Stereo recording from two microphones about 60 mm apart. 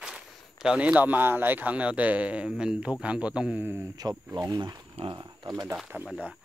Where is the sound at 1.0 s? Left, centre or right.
Right; by 3.6 s centre.